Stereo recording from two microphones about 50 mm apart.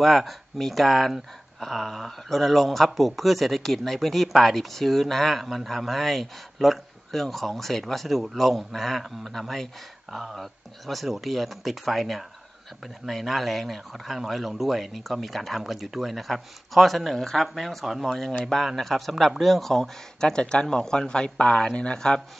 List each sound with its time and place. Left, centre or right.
0.0 s speech: centre